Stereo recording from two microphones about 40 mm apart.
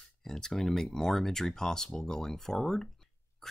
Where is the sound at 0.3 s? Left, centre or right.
Centre.